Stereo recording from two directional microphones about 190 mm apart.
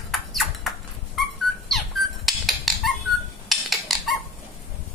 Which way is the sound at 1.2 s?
Centre (ahead or behind).